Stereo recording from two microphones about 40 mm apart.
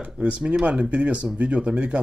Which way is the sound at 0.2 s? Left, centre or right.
Right.